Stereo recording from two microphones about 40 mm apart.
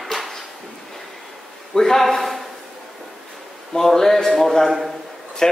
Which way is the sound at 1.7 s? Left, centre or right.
Centre.